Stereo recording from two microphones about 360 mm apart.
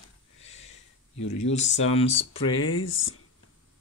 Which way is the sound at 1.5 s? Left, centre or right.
Centre.